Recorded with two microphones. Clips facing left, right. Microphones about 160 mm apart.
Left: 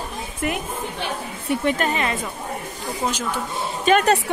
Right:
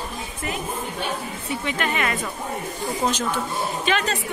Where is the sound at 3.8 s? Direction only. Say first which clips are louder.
Left 9 dB; 50° left (ahead or behind).